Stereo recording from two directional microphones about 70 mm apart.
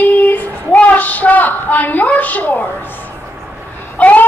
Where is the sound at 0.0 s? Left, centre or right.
Left.